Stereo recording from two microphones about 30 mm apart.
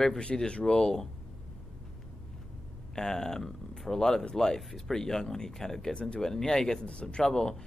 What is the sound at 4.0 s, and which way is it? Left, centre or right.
Speech, centre.